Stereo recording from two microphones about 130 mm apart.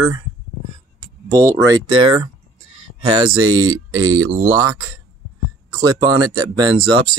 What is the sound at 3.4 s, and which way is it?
Speech, 30° right (ahead or behind).